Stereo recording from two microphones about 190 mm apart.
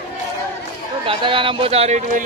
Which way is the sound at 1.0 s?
25° right (ahead or behind).